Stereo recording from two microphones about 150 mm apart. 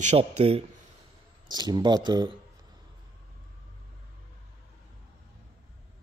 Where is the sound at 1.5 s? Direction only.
30° right (ahead or behind).